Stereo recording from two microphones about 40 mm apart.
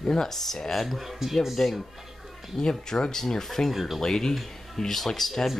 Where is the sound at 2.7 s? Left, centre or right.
Centre.